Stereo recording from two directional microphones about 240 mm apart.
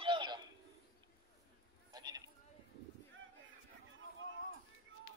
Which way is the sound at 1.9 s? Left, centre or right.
Centre.